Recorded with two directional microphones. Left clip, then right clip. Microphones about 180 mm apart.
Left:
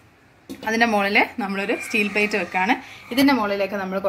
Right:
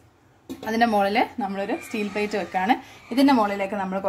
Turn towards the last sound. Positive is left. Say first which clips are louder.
# left 2 dB
turn(degrees=-35)  # may be behind; listen again after turning